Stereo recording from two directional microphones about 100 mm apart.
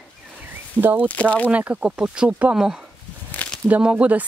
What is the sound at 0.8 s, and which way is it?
Speech, 20° right (ahead or behind).